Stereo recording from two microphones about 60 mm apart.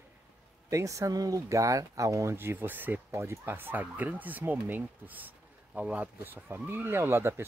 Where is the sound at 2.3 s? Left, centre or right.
Right.